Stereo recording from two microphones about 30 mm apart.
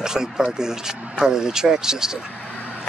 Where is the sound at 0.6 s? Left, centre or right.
Right.